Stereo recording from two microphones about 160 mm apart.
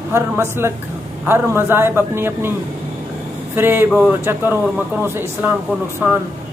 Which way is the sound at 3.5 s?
15° right (ahead or behind).